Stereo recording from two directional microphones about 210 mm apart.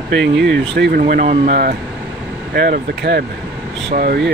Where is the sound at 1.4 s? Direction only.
50° right (ahead or behind).